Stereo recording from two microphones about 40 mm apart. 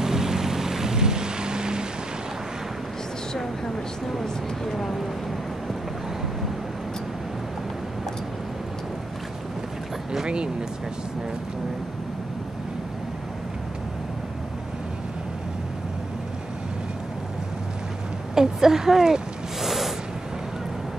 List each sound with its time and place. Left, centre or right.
0.0 s boat: centre
3.3 s speech: centre
10.2 s speech: right
18.3 s a sound: centre